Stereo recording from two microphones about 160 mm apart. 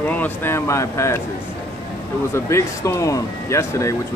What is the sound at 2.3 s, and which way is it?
Speech, 15° left (ahead or behind).